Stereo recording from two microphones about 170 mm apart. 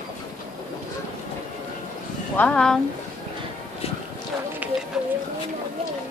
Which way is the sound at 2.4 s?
5° left (ahead or behind).